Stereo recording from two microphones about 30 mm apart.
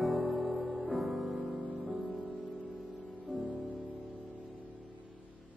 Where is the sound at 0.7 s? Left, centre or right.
Right.